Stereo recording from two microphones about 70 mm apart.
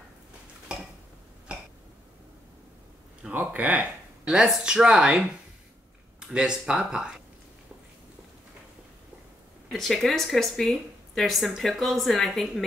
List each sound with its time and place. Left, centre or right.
3.3 s speech: right
9.7 s speech: centre